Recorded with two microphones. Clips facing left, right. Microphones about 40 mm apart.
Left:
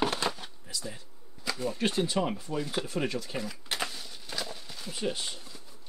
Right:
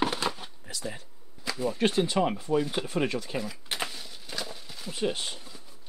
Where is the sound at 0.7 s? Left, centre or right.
Right.